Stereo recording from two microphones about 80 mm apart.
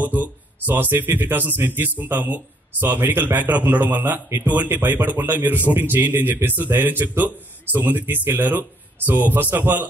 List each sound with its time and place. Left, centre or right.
0.0 s speech: right